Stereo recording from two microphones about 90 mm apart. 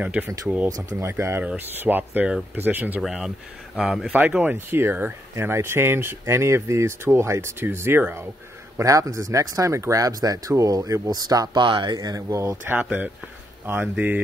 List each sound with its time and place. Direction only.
0.0 s speech: 15° right (ahead or behind)
0.7 s speech: 30° right (ahead or behind)
3.0 s speech: 5° right (ahead or behind)
4.1 s speech: 15° right (ahead or behind)
8.7 s speech: 40° right (ahead or behind)
12.7 s speech: 20° right (ahead or behind)